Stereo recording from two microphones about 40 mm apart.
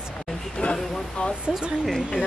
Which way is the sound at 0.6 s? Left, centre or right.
Left.